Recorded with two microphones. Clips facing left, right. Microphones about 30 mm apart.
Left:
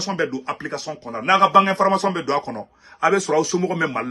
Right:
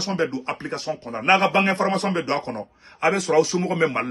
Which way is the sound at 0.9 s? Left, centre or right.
Centre.